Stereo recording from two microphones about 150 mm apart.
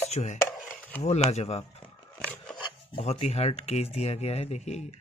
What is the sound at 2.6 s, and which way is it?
Filing, 35° left (ahead or behind).